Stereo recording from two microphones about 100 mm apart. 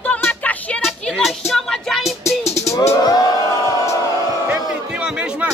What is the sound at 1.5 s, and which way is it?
Music, 5° left (ahead or behind).